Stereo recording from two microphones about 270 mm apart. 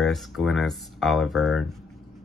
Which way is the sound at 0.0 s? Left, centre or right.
Centre.